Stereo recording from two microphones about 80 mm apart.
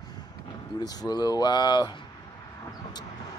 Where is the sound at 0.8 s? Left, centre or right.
Left.